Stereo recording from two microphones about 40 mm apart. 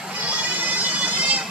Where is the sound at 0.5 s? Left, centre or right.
Right.